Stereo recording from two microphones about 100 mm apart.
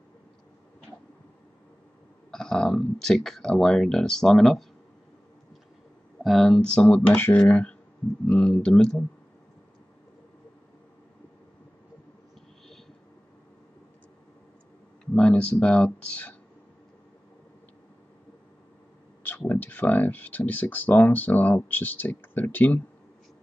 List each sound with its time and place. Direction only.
2.3 s speech: 5° left (ahead or behind)
6.2 s speech: 5° left (ahead or behind)
15.1 s speech: 10° left (ahead or behind)
19.2 s speech: 20° left (ahead or behind)